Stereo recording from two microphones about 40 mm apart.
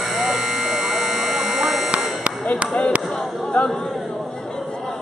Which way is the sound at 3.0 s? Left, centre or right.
Centre.